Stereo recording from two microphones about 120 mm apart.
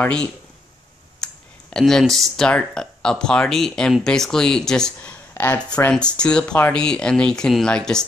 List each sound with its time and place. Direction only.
0.0 s speech: 5° left (ahead or behind)
5.3 s speech: 20° left (ahead or behind)
5.9 s speech: 10° left (ahead or behind)